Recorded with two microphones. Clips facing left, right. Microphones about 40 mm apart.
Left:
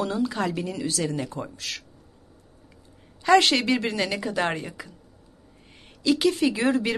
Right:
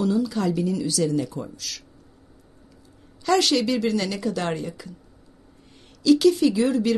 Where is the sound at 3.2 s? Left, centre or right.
Left.